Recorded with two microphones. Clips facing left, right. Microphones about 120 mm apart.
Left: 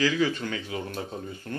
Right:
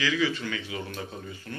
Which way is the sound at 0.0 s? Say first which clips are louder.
Left 2 dB; 40° left (ahead or behind).